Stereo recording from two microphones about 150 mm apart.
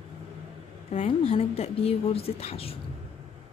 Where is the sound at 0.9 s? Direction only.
40° left (ahead or behind).